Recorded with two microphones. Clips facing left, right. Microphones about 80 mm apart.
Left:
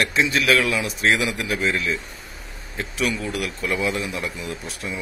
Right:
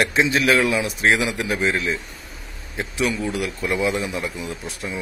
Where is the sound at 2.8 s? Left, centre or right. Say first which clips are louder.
Right 2 dB; right.